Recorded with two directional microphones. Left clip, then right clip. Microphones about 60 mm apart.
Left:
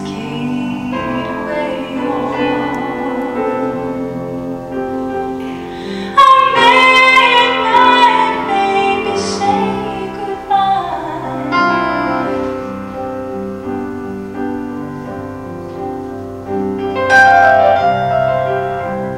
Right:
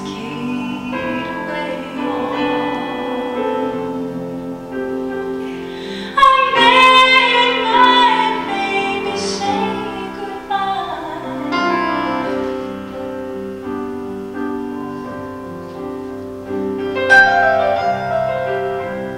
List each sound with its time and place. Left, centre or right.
0.9 s music: centre
6.1 s music: centre
11.4 s music: centre
16.9 s music: centre
18.4 s music: centre